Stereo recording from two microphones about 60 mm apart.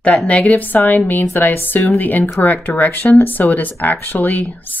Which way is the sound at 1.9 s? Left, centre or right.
Left.